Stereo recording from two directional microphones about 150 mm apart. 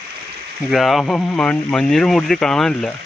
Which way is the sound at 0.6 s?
Centre (ahead or behind).